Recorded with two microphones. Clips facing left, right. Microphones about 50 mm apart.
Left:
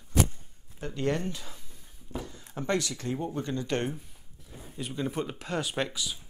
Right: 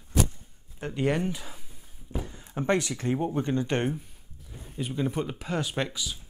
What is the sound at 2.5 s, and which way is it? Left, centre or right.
Speech, right.